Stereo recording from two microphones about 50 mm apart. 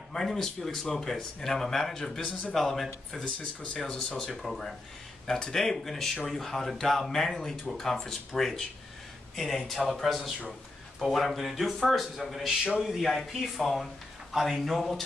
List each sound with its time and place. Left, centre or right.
0.1 s speech: centre
4.2 s speech: centre
12.4 s a man's voice: centre
12.9 s speech: centre